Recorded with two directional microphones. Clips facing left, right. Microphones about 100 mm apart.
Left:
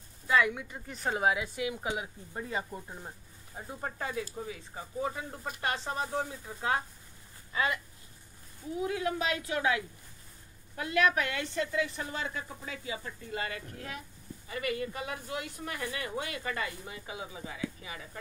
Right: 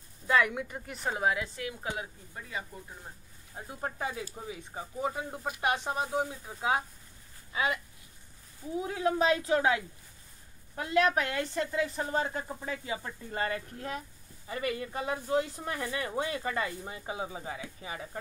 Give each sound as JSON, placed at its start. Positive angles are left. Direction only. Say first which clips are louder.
{"t": 0.4, "sound": "speech", "louder": "even", "side_deg": -15}
{"t": 1.0, "sound": "a woman's voice", "louder": "left 1 dB", "side_deg": 5}
{"t": 2.3, "sound": "speech", "louder": "left 5 dB", "side_deg": 30}
{"t": 3.5, "sound": "speech", "louder": "right 1 dB", "side_deg": -5}
{"t": 4.1, "sound": "speech", "louder": "left 2 dB", "side_deg": -15}
{"t": 8.7, "sound": "speech", "louder": "right 3 dB", "side_deg": -25}